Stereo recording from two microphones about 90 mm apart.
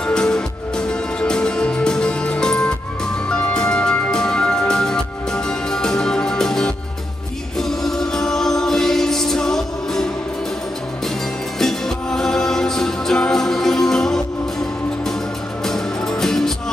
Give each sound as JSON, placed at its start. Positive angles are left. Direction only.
{"t": 0.0, "sound": "music", "side_deg": 10}
{"t": 11.5, "sound": "music", "side_deg": 5}
{"t": 15.6, "sound": "music", "side_deg": 5}